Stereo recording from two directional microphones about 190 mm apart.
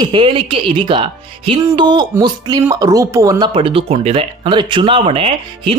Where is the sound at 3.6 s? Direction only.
30° right (ahead or behind).